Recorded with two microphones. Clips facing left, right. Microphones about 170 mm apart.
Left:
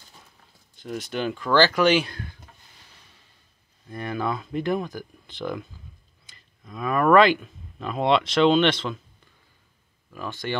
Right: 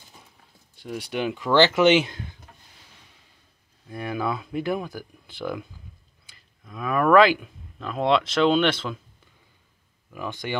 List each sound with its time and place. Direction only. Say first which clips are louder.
0.7 s speech: even; 10° right (ahead or behind)
3.9 s speech: even; 10° right (ahead or behind)
10.1 s speech: even; 15° right (ahead or behind)